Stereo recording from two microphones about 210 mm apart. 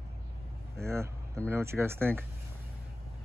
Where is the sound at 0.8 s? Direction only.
15° right (ahead or behind).